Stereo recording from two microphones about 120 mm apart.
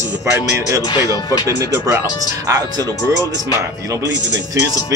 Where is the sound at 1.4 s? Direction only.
30° right (ahead or behind).